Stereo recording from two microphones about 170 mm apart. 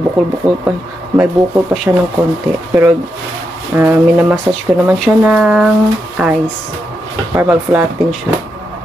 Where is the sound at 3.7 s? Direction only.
15° right (ahead or behind).